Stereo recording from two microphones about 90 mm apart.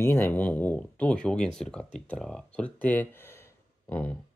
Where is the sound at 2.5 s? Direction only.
15° left (ahead or behind).